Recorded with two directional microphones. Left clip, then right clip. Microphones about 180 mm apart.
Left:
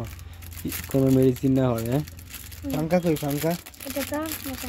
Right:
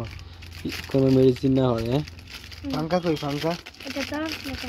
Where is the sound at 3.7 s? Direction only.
20° left (ahead or behind).